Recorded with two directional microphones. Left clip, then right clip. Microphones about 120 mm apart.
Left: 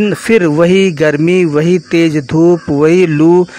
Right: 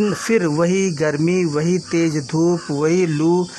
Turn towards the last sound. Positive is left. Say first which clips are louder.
# left 9 dB
turn(degrees=25)  # may be behind; listen again after turning